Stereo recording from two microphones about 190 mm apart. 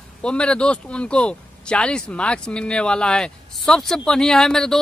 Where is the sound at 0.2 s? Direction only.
5° left (ahead or behind).